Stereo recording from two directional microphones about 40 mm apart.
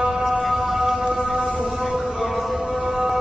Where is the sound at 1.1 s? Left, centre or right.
Centre.